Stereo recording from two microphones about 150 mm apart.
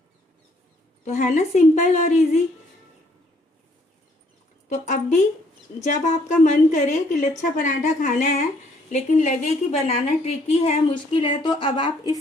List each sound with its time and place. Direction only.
1.0 s a woman's voice: 55° left (ahead or behind)
4.6 s a woman's voice: 55° left (ahead or behind); by 12.2 s 30° left (ahead or behind)